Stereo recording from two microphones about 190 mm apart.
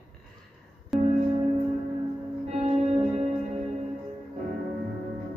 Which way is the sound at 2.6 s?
35° right (ahead or behind).